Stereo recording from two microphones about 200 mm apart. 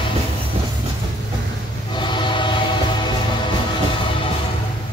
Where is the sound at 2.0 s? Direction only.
25° left (ahead or behind).